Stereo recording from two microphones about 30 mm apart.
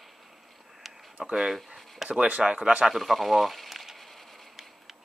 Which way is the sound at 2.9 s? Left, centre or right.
Centre.